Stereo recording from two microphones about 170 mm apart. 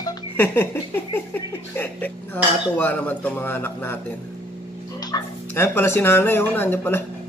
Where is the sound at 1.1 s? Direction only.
10° left (ahead or behind).